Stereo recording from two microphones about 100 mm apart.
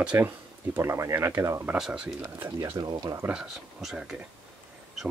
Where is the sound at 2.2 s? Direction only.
30° right (ahead or behind).